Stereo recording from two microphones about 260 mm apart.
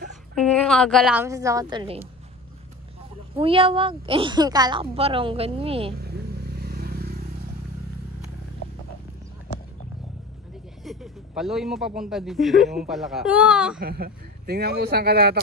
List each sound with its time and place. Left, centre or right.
0.3 s a woman's voice: centre
3.3 s a woman's voice: right
6.6 s vehicle: right
10.8 s speech: centre
13.7 s speech: right